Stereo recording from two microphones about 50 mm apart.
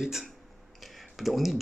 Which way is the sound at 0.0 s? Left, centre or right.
Centre.